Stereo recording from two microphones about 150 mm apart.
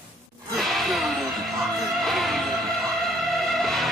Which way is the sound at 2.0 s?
Centre (ahead or behind).